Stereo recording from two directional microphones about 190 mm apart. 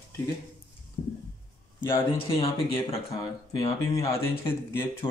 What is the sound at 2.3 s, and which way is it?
Speech, 30° left (ahead or behind).